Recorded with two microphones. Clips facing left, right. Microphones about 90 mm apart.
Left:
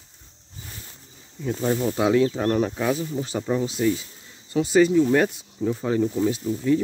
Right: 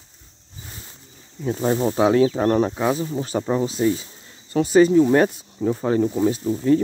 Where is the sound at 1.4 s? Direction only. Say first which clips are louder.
Right 3 dB; 35° right (ahead or behind).